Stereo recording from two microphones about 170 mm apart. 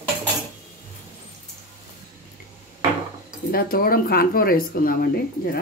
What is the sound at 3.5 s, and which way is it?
Speech, 60° left (ahead or behind).